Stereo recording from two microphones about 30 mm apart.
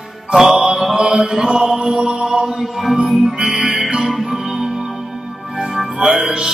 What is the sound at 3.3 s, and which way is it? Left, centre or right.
Mantra, right.